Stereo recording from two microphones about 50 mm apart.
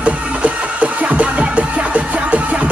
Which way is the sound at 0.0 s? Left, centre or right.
Right.